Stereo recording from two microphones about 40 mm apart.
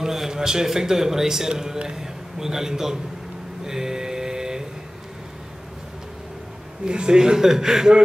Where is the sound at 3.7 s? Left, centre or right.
Centre.